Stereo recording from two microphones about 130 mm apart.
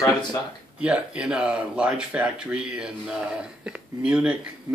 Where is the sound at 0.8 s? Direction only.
10° right (ahead or behind).